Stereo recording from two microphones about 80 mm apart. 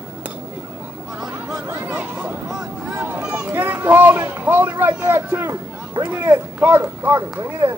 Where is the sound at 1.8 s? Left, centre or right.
Right.